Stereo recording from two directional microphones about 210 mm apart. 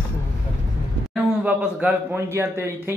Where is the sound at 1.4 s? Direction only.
10° right (ahead or behind).